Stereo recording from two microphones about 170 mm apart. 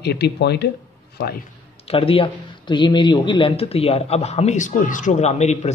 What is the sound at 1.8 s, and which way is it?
Speech, 30° left (ahead or behind).